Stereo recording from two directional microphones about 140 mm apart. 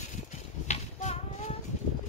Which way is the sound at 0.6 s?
55° left (ahead or behind).